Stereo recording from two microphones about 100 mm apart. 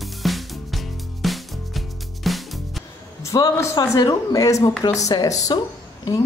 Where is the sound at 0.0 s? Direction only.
Centre (ahead or behind).